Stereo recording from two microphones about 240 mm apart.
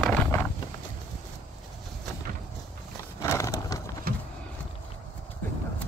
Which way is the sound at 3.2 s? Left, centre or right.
Centre.